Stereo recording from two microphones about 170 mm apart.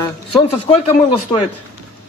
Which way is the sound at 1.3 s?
15° left (ahead or behind).